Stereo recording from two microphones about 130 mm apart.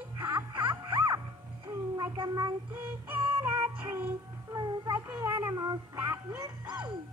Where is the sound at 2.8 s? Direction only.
15° right (ahead or behind).